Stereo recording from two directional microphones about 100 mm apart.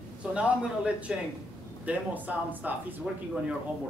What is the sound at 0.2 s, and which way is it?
A man's voice, 10° right (ahead or behind).